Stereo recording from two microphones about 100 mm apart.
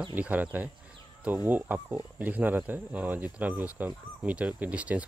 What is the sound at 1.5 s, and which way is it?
Speech, 20° right (ahead or behind).